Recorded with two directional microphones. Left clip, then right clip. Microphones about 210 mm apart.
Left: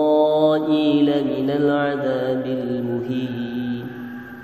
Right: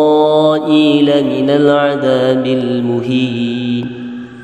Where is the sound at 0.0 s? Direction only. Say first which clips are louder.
Right 7 dB; 40° right (ahead or behind).